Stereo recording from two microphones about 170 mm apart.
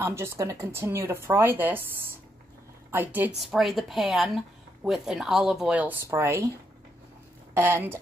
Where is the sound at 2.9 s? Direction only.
10° right (ahead or behind).